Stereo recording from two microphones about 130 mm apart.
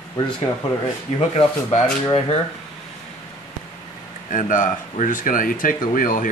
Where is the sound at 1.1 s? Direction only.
50° left (ahead or behind).